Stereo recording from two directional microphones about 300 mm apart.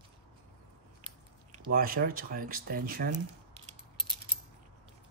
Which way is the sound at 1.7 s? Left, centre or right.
Right.